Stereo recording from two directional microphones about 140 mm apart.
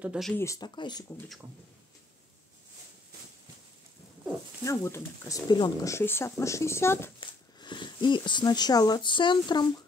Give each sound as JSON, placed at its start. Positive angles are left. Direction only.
{"t": 0.0, "sound": "speech", "side_deg": -5}
{"t": 0.4, "sound": "speech", "side_deg": 25}
{"t": 4.6, "sound": "speech", "side_deg": 20}
{"t": 5.5, "sound": "speech", "side_deg": 30}
{"t": 5.9, "sound": "speech", "side_deg": 20}
{"t": 7.2, "sound": "speech", "side_deg": 35}